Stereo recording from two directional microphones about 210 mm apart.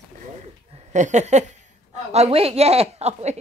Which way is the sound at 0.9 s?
35° right (ahead or behind).